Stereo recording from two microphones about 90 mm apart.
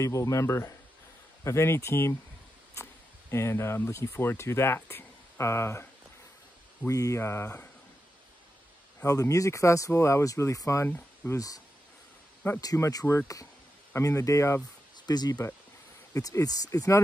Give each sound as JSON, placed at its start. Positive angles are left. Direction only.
{"t": 0.0, "sound": "speech", "side_deg": 35}
{"t": 6.9, "sound": "speech", "side_deg": 35}
{"t": 9.0, "sound": "speech", "side_deg": 40}
{"t": 15.0, "sound": "speech", "side_deg": 45}